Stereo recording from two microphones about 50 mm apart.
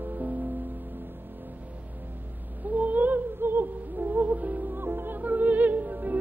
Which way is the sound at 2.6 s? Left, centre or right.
Right.